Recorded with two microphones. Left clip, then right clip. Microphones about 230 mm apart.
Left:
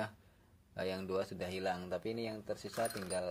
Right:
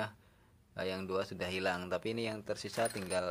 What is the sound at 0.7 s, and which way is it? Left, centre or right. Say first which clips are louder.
Speech: right 1 dB; centre.